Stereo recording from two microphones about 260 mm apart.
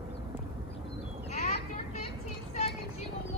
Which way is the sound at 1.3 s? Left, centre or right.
Left.